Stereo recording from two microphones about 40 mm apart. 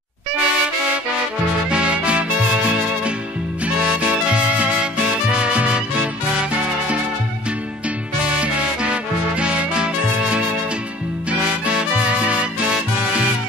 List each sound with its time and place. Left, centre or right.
0.4 s music: right
8.2 s music: right